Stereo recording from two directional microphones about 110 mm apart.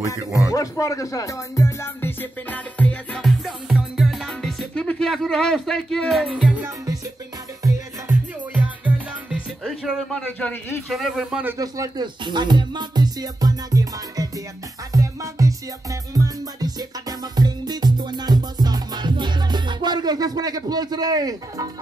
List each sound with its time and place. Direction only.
0.2 s speech: 30° right (ahead or behind)
0.5 s speech: 30° left (ahead or behind); by 3.2 s 15° left (ahead or behind)
3.2 s music: centre (ahead or behind)
5.1 s speech: 5° left (ahead or behind)
6.2 s music: 10° right (ahead or behind)
8.1 s music: 15° right (ahead or behind)
10.1 s a man's voice: 15° left (ahead or behind)
10.9 s speech: centre (ahead or behind)
11.5 s speech: 30° right (ahead or behind)
12.3 s music: 45° right (ahead or behind)
17.2 s music: 40° right (ahead or behind)